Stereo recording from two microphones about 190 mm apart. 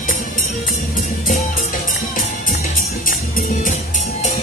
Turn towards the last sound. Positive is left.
turn(degrees=45)  # may be behind; listen again after turning